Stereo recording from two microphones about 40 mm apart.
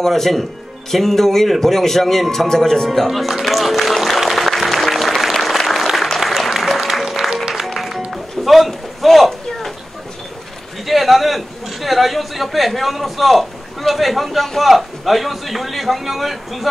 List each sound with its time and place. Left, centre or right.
0.0 s a man's voice: centre
2.9 s music: centre
8.1 s a sound: centre
10.9 s a man's voice: centre